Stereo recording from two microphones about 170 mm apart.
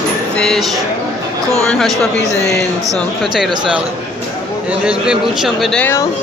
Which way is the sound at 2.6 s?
20° right (ahead or behind).